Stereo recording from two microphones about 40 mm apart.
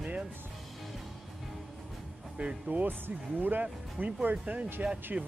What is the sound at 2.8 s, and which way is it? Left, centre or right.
Speech, right.